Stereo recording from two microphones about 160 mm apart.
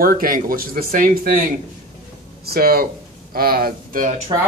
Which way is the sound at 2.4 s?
70° right (ahead or behind).